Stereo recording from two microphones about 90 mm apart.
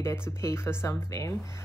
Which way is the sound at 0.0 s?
30° left (ahead or behind).